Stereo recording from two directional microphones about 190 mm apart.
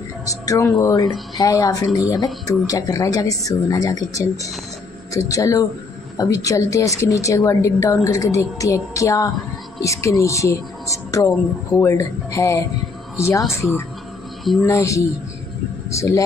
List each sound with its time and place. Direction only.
0.2 s a woman's voice: 15° left (ahead or behind)
14.4 s speech: centre (ahead or behind)
14.7 s a woman's voice: 15° left (ahead or behind)